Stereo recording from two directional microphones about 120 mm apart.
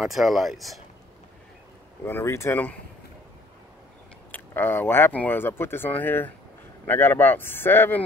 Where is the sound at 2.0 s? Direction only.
20° left (ahead or behind).